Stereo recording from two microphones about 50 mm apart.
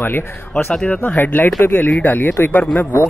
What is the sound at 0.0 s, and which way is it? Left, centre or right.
Speech, left.